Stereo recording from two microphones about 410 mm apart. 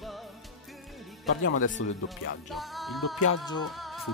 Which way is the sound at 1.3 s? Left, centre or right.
Left.